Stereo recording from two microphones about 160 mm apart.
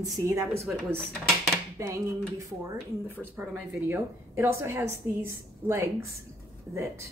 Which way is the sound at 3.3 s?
5° right (ahead or behind).